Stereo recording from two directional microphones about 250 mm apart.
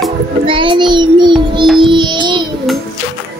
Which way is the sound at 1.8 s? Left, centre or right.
Centre.